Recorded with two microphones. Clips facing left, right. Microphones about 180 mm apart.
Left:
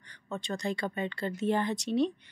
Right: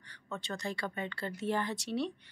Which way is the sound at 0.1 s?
20° left (ahead or behind).